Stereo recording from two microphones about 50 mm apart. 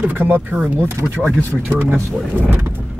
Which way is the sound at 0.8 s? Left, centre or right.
Right.